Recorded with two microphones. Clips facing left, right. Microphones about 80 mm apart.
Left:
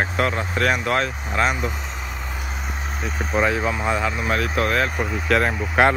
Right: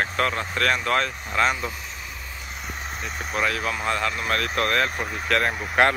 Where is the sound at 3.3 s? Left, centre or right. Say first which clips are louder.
Left 5 dB; left; by 5.9 s centre.